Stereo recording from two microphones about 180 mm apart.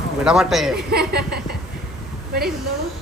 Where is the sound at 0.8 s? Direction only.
60° right (ahead or behind).